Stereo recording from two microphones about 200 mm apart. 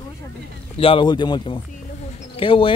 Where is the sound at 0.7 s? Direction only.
25° left (ahead or behind).